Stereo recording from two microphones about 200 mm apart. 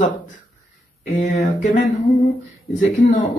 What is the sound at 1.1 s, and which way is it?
Speech, 35° left (ahead or behind).